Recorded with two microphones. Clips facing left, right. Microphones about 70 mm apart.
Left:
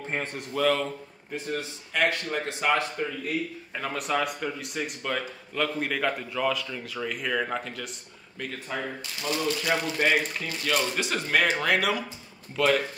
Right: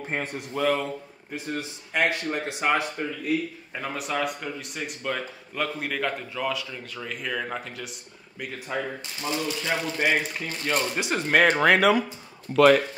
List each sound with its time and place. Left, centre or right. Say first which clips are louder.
0.1 s a man's voice: right 1 dB; centre
3.7 s speech: left 1 dB; centre
8.7 s a man's voice: right 4 dB; centre
9.9 s a man's voice: right 1 dB; centre
10.4 s speech: even; right
11.2 s speech: right 5 dB; right
11.5 s speech: right 6 dB; right
12.5 s speech: right 7 dB; right